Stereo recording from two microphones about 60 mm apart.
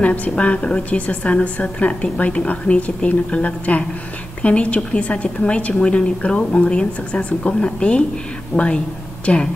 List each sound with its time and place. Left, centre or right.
0.0 s a woman's voice: left